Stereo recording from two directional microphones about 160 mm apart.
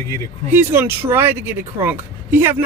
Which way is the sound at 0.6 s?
15° right (ahead or behind).